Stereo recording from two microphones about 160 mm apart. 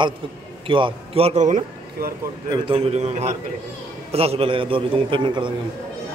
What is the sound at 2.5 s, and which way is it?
A man's voice, 35° right (ahead or behind).